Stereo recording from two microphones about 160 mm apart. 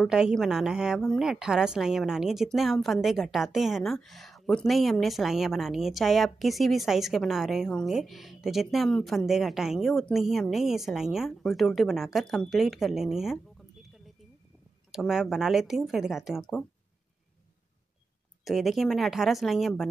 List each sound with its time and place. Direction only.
0.0 s a woman's voice: 5° right (ahead or behind)
14.9 s a woman's voice: 5° right (ahead or behind)
18.4 s a woman's voice: centre (ahead or behind)